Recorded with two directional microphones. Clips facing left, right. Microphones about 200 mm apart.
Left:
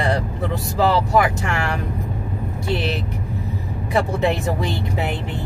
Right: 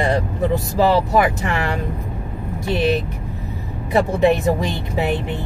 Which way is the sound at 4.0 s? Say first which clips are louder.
Right 4 dB; 20° right (ahead or behind).